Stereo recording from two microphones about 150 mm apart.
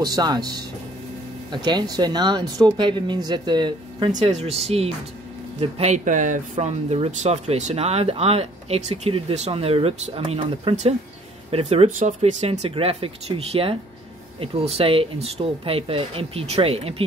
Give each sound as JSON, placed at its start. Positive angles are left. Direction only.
{"t": 0.0, "sound": "speech", "side_deg": -25}
{"t": 4.1, "sound": "speech", "side_deg": -50}